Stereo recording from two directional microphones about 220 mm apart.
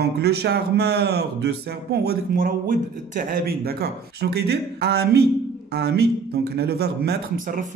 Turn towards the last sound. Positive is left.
turn(degrees=-40)  # may be behind; listen again after turning